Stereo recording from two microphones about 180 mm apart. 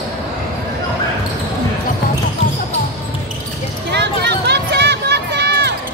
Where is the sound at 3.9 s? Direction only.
70° right (ahead or behind).